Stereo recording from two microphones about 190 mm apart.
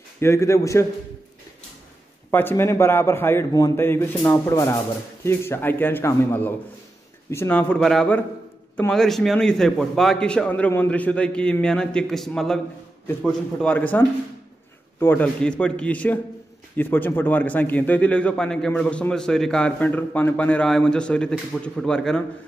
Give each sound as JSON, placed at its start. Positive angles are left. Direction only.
{"t": 0.2, "sound": "a man's voice", "side_deg": 15}
{"t": 2.3, "sound": "a man's voice", "side_deg": 10}